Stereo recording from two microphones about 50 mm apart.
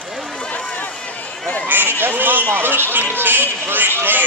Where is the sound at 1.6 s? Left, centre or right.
Right.